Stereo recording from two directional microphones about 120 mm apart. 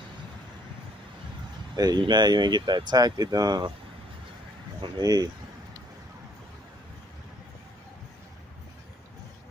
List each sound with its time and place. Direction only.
1.8 s speech: 35° right (ahead or behind)
4.9 s speech: 35° right (ahead or behind)